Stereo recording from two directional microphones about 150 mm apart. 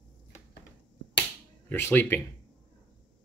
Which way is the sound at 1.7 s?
15° left (ahead or behind).